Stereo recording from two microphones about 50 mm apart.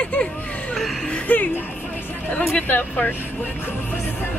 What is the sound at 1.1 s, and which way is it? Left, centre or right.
Music, left.